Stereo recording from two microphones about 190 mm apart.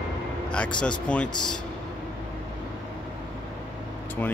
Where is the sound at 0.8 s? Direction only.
5° left (ahead or behind).